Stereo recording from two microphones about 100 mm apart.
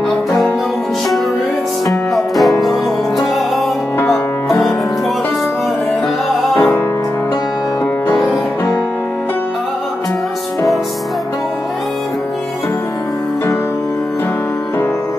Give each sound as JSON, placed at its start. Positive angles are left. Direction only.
{"t": 1.9, "sound": "music", "side_deg": 0}
{"t": 6.5, "sound": "music", "side_deg": 25}